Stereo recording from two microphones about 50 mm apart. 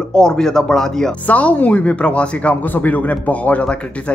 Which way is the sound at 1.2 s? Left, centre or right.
Left.